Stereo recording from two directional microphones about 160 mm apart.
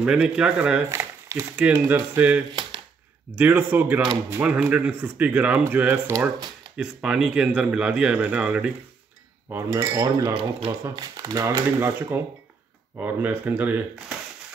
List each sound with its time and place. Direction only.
0.0 s speech: 5° right (ahead or behind)
6.8 s speech: 5° right (ahead or behind); by 10.3 s 20° right (ahead or behind)
10.3 s speech: 35° right (ahead or behind)
11.1 s speech: 20° right (ahead or behind)